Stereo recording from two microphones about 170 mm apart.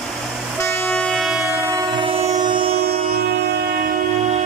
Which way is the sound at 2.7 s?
65° right (ahead or behind).